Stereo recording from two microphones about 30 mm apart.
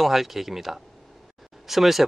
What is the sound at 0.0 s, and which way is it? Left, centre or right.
Speech, centre.